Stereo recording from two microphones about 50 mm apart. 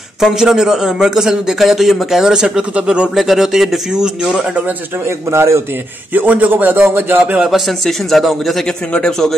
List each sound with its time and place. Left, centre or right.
0.2 s a man's voice: centre
2.7 s speech: right
3.2 s speech: centre
5.0 s a man's voice: right
6.1 s speech: right
7.4 s speech: centre
8.6 s a man's voice: centre